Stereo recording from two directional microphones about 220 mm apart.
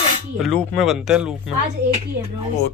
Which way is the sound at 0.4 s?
Centre (ahead or behind).